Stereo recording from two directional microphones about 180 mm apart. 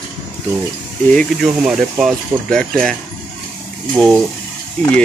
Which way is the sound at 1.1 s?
5° left (ahead or behind).